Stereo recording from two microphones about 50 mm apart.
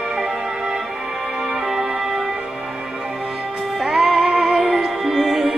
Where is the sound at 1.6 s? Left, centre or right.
Centre.